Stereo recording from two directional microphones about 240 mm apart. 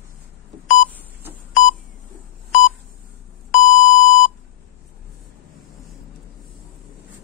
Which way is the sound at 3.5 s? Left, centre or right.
Left.